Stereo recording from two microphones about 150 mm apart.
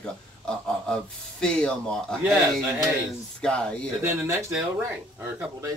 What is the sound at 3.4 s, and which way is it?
Speech, 5° left (ahead or behind).